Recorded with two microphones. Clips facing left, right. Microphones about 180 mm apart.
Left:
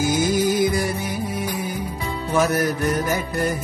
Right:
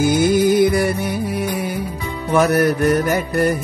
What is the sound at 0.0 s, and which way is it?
Music, 60° right (ahead or behind).